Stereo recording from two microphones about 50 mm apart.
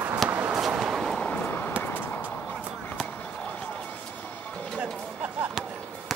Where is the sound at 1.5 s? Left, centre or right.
Left.